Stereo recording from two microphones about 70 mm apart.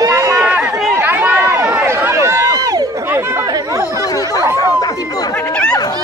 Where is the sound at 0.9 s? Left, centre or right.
Right.